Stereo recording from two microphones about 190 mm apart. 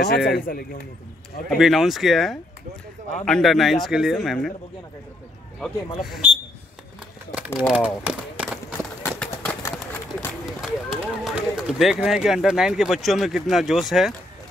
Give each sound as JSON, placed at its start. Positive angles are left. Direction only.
{"t": 0.1, "sound": "speech", "side_deg": 55}
{"t": 1.5, "sound": "speech", "side_deg": 0}
{"t": 5.6, "sound": "speech", "side_deg": 0}
{"t": 7.3, "sound": "speech", "side_deg": -5}
{"t": 9.0, "sound": "run", "side_deg": 10}
{"t": 10.6, "sound": "speech", "side_deg": 0}